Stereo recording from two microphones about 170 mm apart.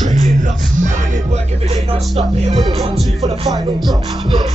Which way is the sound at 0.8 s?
45° right (ahead or behind).